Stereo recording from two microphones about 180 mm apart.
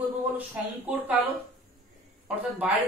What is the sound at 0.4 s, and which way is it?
Speech, 10° right (ahead or behind).